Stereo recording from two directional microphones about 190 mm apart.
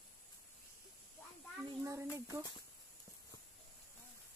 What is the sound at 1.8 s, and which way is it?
Speech, 15° right (ahead or behind).